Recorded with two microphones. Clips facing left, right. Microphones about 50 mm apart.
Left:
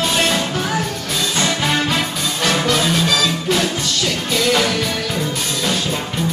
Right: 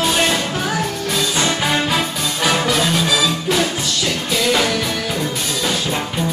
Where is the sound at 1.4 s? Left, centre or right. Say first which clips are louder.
Left 2 dB; centre.